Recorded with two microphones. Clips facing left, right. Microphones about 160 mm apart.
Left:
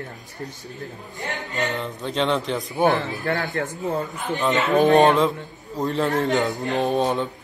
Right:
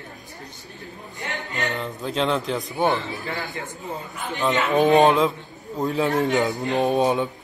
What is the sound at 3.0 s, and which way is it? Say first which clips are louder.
Speech: left 5 dB; 70° left (ahead or behind).